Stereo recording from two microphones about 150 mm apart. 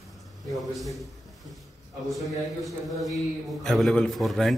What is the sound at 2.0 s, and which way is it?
A man's voice, centre (ahead or behind).